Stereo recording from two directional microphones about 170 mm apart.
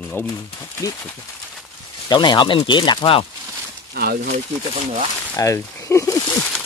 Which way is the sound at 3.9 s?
65° right (ahead or behind).